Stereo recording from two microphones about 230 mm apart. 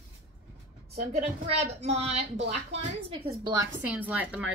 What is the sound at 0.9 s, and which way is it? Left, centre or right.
A woman's voice, right.